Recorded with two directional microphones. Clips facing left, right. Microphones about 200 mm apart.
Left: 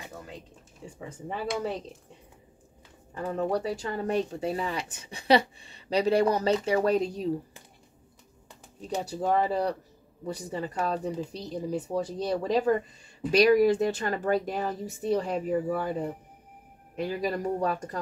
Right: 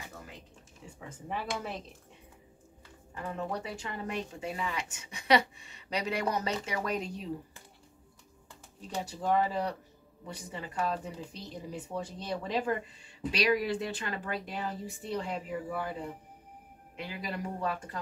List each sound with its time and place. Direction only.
0.9 s speech: 30° left (ahead or behind)
3.2 s speech: 35° left (ahead or behind)
9.0 s speech: 40° left (ahead or behind)